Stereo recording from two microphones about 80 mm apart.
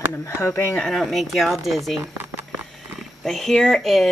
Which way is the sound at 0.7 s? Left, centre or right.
Centre.